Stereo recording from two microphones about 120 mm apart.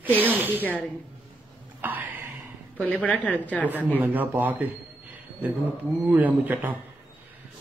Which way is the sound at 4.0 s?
15° right (ahead or behind).